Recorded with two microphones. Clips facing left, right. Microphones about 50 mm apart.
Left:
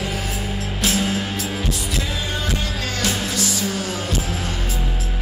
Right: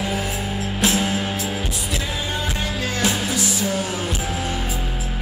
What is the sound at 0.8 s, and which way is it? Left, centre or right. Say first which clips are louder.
Music: right 1 dB; centre.